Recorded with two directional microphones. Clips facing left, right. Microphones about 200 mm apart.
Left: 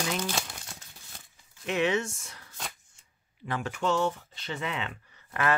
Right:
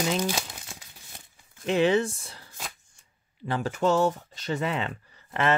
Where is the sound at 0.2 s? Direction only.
10° right (ahead or behind).